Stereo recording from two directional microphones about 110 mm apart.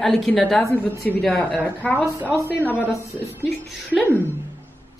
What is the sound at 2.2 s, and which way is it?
Speech, 20° right (ahead or behind).